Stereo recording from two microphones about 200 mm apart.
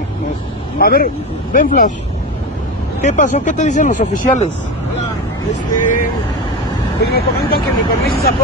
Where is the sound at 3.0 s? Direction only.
35° left (ahead or behind).